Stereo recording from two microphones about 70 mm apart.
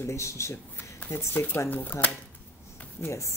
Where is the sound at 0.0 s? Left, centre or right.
Left.